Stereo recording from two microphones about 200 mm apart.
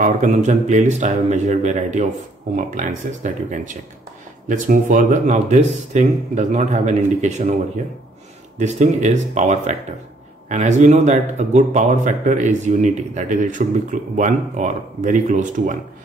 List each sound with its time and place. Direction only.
0.0 s a man's voice: 35° right (ahead or behind)
8.5 s a man's voice: 35° right (ahead or behind)